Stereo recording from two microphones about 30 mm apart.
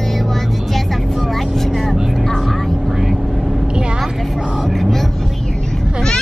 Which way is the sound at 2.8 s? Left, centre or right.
Centre.